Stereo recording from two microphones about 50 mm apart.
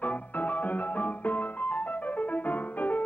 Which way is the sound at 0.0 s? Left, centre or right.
Left.